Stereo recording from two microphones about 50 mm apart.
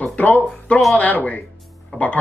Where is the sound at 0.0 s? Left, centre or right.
Left.